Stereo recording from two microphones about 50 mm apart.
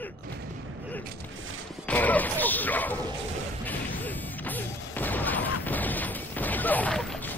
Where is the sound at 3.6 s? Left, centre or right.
Left.